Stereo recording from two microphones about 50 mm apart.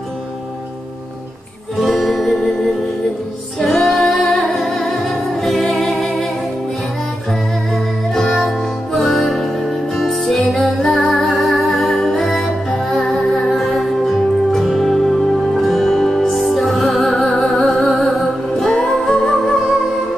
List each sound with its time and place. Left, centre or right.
1.8 s music: centre
3.5 s female singing: centre
5.4 s music: centre
7.7 s music: centre
13.6 s music: centre